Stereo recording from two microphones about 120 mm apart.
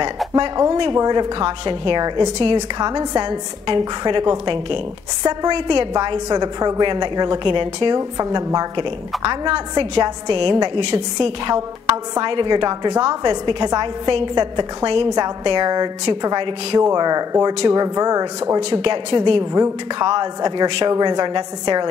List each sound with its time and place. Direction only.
0.9 s a woman's voice: 35° right (ahead or behind)
8.2 s a woman's voice: 30° right (ahead or behind)
11.5 s a woman's voice: 30° right (ahead or behind)
18.7 s a woman's voice: 45° right (ahead or behind)
19.5 s a woman's voice: 35° right (ahead or behind)